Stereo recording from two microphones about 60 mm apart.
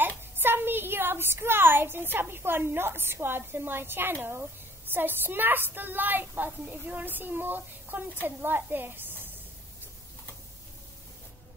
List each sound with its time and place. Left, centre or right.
0.2 s a woman's voice: right